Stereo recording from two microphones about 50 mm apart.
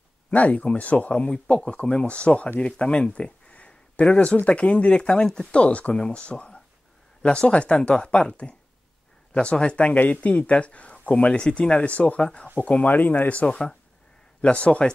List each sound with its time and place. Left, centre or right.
0.3 s speech: left